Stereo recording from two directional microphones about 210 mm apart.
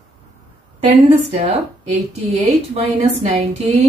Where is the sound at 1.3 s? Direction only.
30° right (ahead or behind).